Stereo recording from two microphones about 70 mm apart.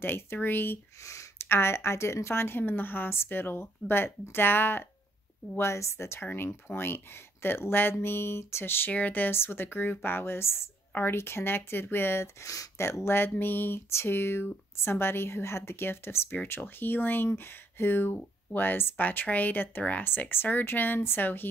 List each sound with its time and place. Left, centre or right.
0.0 s speech: left
1.0 s a sound: left
1.5 s speech: left
5.6 s speech: left